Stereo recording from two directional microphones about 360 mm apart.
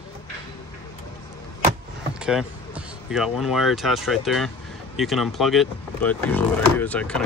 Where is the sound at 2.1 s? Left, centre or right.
Centre.